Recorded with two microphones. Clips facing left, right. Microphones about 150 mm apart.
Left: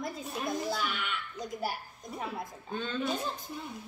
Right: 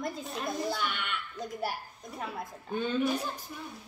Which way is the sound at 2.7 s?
10° right (ahead or behind).